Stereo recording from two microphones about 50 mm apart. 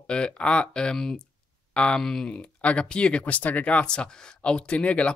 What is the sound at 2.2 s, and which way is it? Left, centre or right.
Speech, left.